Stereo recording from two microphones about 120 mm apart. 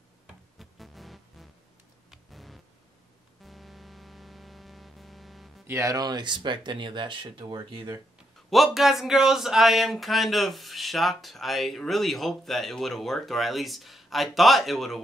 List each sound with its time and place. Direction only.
0.6 s music: centre (ahead or behind)
5.7 s speech: 25° right (ahead or behind)
8.5 s speech: centre (ahead or behind)